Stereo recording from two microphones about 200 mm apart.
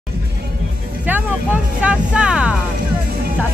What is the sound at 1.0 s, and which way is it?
Speech, 10° right (ahead or behind).